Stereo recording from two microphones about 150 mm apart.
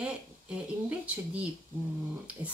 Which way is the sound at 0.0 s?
10° right (ahead or behind).